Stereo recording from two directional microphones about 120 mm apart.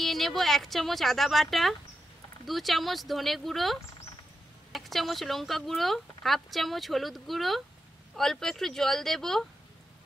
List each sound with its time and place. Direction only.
0.0 s speech: centre (ahead or behind)